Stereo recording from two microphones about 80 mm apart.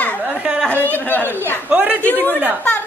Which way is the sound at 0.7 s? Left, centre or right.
Left.